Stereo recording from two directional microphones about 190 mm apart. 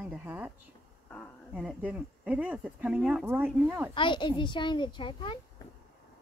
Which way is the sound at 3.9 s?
25° left (ahead or behind).